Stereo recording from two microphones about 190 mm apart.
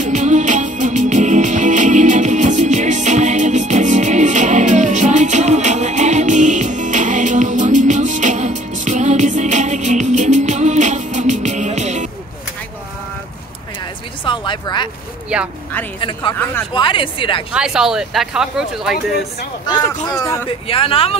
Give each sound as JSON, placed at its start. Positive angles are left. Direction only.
{"t": 0.0, "sound": "music", "side_deg": -40}
{"t": 14.2, "sound": "a sound", "side_deg": 25}
{"t": 15.3, "sound": "a sound", "side_deg": -5}
{"t": 16.0, "sound": "speech", "side_deg": 25}
{"t": 17.5, "sound": "speech", "side_deg": -5}
{"t": 20.2, "sound": "speech", "side_deg": 15}
{"t": 20.4, "sound": "speech", "side_deg": 30}